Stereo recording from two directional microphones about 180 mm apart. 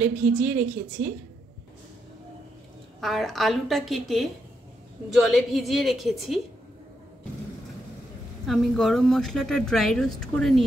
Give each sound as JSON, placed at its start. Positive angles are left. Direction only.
{"t": 0.0, "sound": "a woman's voice", "side_deg": -10}
{"t": 1.0, "sound": "a woman's voice", "side_deg": -55}
{"t": 3.0, "sound": "speech", "side_deg": 0}
{"t": 8.5, "sound": "speech", "side_deg": 0}